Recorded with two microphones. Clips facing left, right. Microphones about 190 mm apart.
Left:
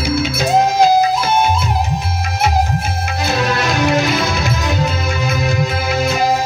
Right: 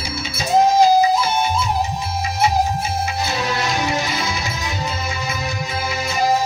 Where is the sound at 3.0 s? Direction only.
70° left (ahead or behind).